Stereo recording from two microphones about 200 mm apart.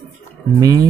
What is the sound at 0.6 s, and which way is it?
Speech, 20° right (ahead or behind).